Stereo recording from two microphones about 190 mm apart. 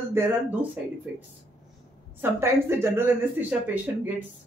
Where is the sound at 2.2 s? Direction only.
10° right (ahead or behind).